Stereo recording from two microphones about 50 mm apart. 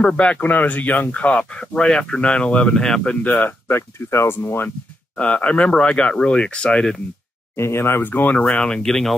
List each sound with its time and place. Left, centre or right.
0.0 s speech: left
1.3 s speech: centre
3.6 s speech: left
5.1 s speech: left
7.5 s speech: left
8.0 s speech: left
8.4 s speech: left